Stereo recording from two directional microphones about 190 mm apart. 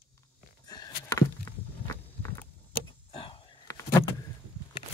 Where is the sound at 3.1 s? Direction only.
30° left (ahead or behind).